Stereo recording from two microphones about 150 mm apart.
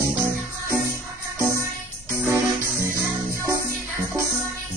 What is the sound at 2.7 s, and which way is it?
Music, 70° right (ahead or behind).